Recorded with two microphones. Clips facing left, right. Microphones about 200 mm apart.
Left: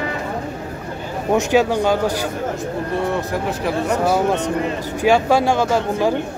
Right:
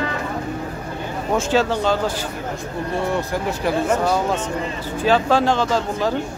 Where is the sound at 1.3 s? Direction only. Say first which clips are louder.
Left 3 dB; 15° left (ahead or behind).